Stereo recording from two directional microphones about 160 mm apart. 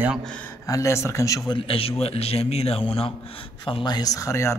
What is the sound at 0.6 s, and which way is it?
Speech, 20° left (ahead or behind).